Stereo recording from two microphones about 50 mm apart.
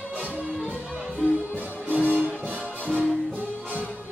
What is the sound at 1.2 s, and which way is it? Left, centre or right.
Music, right.